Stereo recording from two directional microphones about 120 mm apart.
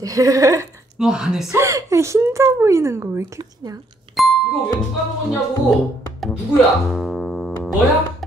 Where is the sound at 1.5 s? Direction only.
25° right (ahead or behind).